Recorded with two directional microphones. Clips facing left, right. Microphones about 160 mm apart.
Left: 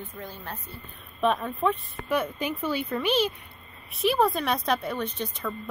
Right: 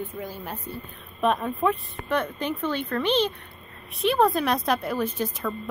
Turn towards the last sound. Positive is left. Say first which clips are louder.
# right 4 dB
turn(degrees=-5)  # may be behind; listen again after turning